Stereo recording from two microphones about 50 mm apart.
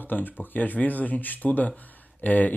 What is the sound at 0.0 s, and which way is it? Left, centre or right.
Speech, left.